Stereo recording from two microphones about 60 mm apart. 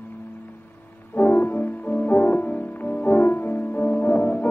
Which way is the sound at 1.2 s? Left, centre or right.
Left.